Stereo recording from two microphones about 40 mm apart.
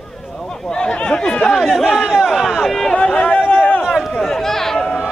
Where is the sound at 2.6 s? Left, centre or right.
Centre.